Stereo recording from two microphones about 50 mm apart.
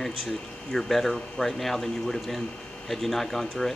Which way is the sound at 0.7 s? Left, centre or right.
Centre.